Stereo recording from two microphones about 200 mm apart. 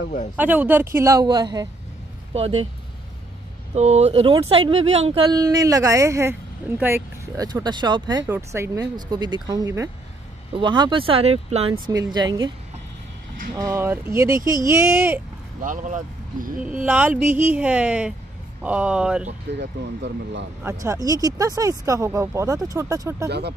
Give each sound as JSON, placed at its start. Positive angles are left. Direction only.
{"t": 0.4, "sound": "speech", "side_deg": -10}
{"t": 2.3, "sound": "speech", "side_deg": -30}
{"t": 3.7, "sound": "speech", "side_deg": -35}
{"t": 11.9, "sound": "speech", "side_deg": -20}
{"t": 13.6, "sound": "speech", "side_deg": -15}
{"t": 15.6, "sound": "speech", "side_deg": -40}
{"t": 16.6, "sound": "speech", "side_deg": -5}
{"t": 19.5, "sound": "speech", "side_deg": -60}
{"t": 20.6, "sound": "speech", "side_deg": -15}
{"t": 23.2, "sound": "speech", "side_deg": -55}